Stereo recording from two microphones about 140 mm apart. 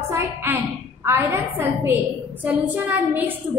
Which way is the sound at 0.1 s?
15° right (ahead or behind).